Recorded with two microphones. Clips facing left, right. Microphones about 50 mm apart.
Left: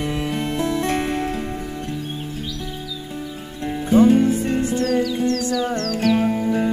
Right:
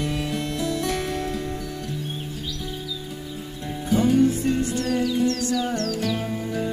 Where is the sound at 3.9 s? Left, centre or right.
Left.